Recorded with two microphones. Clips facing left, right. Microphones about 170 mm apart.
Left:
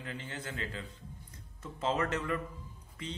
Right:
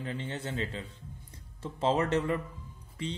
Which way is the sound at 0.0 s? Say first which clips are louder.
Right 5 dB; 30° right (ahead or behind).